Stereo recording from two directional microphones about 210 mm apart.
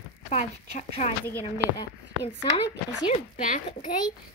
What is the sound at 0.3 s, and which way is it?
Speech, 30° left (ahead or behind).